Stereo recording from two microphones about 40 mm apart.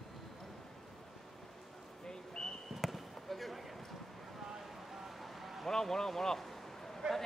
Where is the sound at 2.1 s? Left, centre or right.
Centre.